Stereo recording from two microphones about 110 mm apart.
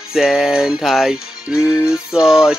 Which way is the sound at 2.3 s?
5° right (ahead or behind).